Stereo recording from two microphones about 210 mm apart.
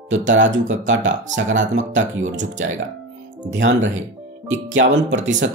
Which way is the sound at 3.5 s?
65° right (ahead or behind).